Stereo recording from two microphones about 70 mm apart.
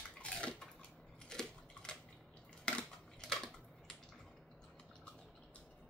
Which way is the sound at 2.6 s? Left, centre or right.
Centre.